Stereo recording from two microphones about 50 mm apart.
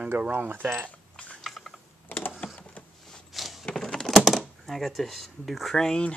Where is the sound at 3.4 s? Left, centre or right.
Centre.